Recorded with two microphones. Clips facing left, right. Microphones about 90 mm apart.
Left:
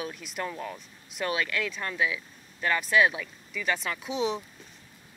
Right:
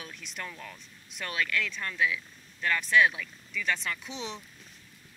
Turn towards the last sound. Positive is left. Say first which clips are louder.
# left 9 dB
turn(degrees=5)  # may be behind; listen again after turning